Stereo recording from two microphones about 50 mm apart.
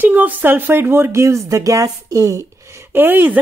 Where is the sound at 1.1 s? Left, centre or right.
Right.